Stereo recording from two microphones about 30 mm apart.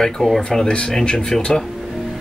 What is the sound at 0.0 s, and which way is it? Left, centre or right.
Speech, centre.